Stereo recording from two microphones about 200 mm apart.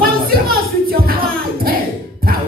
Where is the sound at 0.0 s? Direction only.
50° right (ahead or behind).